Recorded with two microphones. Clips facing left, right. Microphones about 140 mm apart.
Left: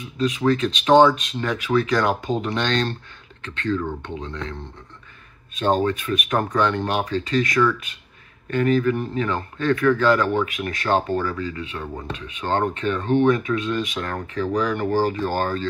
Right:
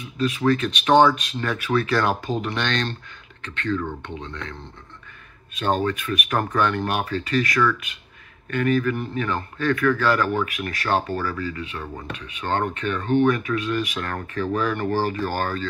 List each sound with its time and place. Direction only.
0.2 s speech: 25° left (ahead or behind)
5.6 s speech: 25° left (ahead or behind)